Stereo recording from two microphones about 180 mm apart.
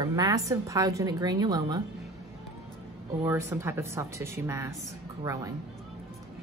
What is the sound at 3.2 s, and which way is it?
Speech, 15° right (ahead or behind).